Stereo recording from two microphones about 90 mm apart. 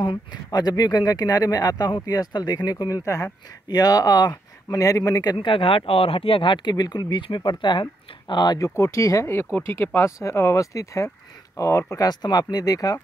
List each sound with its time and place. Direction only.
0.0 s speech: 55° left (ahead or behind)
5.4 s speech: 75° left (ahead or behind); by 8.5 s 55° left (ahead or behind)
8.5 s speech: 30° left (ahead or behind)
12.1 s speech: 50° left (ahead or behind)